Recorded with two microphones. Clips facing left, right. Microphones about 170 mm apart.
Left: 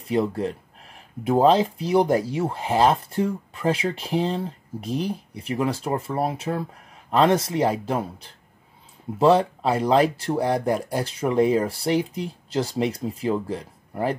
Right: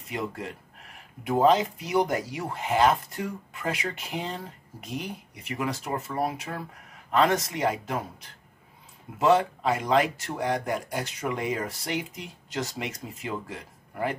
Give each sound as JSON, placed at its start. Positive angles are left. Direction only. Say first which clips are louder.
{"t": 0.0, "sound": "speech", "louder": "left 10 dB", "side_deg": 30}